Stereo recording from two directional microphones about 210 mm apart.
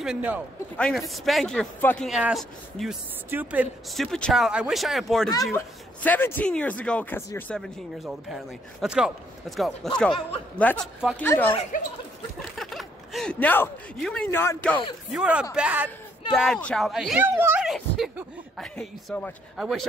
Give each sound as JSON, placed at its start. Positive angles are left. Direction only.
{"t": 0.0, "sound": "a man's voice", "side_deg": -5}
{"t": 11.7, "sound": "speech", "side_deg": 40}
{"t": 12.5, "sound": "speech", "side_deg": 0}
{"t": 15.1, "sound": "a man's voice", "side_deg": -5}
{"t": 16.3, "sound": "a man's voice", "side_deg": 5}